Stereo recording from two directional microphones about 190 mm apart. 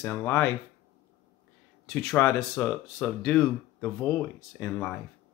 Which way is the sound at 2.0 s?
10° left (ahead or behind).